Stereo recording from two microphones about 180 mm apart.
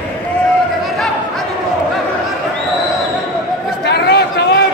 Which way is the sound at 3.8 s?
65° left (ahead or behind).